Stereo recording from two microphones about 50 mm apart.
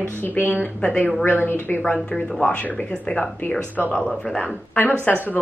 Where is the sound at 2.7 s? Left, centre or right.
Left.